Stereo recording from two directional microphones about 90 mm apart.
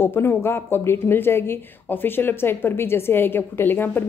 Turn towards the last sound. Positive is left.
turn(degrees=25)  # may be behind; listen again after turning